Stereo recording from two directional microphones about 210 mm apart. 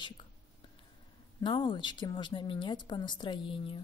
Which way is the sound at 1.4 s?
25° left (ahead or behind).